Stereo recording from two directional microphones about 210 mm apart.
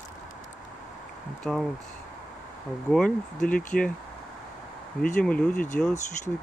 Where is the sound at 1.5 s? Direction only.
Centre (ahead or behind).